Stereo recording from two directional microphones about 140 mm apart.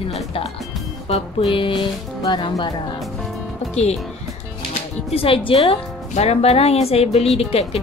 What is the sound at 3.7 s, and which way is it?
Speech, 50° left (ahead or behind).